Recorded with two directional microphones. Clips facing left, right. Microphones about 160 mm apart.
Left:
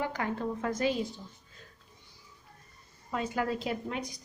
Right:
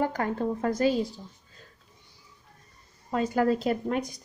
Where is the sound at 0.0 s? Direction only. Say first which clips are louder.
Right 5 dB; 45° right (ahead or behind).